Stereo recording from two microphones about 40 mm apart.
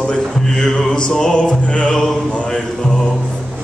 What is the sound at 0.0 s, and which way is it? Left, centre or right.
Speech, centre.